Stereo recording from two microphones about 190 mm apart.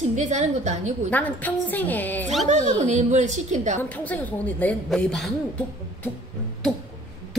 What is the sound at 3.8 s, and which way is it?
A woman's voice, 10° left (ahead or behind).